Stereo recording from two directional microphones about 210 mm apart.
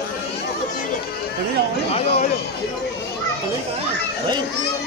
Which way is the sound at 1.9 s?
30° left (ahead or behind).